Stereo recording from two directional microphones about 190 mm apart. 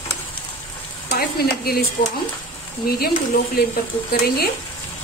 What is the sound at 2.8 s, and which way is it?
Speech, 55° left (ahead or behind).